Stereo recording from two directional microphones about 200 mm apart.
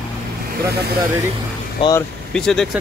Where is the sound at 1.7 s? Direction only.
20° left (ahead or behind).